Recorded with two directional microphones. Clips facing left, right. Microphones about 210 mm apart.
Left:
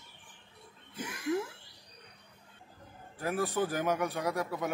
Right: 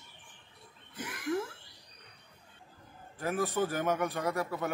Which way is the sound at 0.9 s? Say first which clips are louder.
Left 1 dB; 25° left (ahead or behind).